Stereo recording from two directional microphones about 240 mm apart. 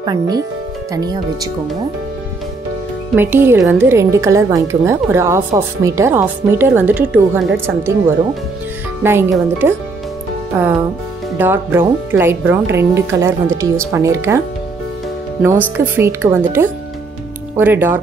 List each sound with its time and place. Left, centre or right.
0.0 s a woman's voice: centre
3.2 s a woman's voice: centre
9.0 s a woman's voice: centre
15.4 s a woman's voice: centre